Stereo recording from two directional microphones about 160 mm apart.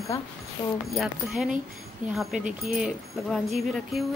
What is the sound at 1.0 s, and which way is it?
Speech, centre (ahead or behind).